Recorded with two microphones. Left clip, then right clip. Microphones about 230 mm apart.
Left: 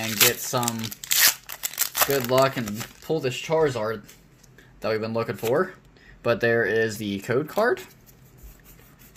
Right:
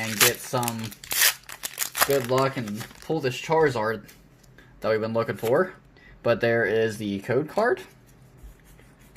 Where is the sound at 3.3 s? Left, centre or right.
Centre.